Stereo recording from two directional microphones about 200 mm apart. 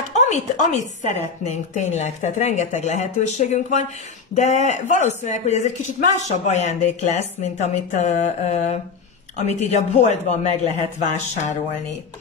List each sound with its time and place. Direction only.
0.1 s a woman's voice: 35° left (ahead or behind)